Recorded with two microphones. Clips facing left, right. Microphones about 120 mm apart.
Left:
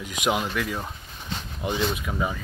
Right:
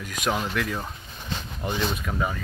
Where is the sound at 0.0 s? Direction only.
15° left (ahead or behind).